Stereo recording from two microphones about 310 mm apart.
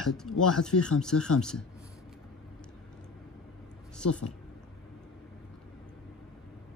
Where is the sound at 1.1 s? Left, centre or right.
Left.